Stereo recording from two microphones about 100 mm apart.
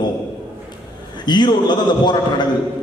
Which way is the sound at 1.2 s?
50° left (ahead or behind).